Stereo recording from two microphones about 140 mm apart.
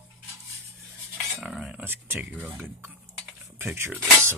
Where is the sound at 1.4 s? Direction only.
5° right (ahead or behind).